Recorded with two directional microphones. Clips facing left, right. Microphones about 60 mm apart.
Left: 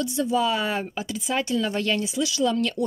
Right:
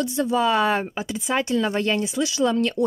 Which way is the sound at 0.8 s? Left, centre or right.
Right.